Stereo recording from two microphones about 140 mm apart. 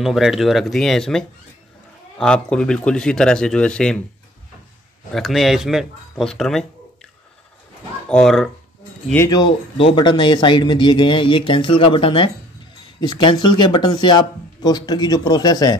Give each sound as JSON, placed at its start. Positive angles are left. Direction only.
{"t": 0.0, "sound": "speech", "side_deg": 0}
{"t": 5.1, "sound": "speech", "side_deg": 0}
{"t": 8.1, "sound": "speech", "side_deg": 5}
{"t": 9.8, "sound": "speech", "side_deg": 35}